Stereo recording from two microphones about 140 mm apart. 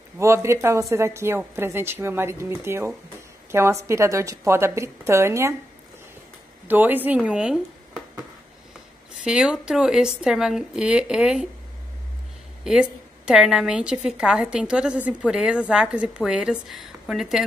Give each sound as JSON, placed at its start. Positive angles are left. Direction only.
{"t": 0.2, "sound": "a woman's voice", "side_deg": -20}
{"t": 6.7, "sound": "a woman's voice", "side_deg": -15}
{"t": 9.2, "sound": "speech", "side_deg": -5}
{"t": 12.7, "sound": "a woman's voice", "side_deg": -5}